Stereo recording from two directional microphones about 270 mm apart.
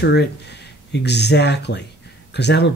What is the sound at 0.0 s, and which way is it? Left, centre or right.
Speech, left.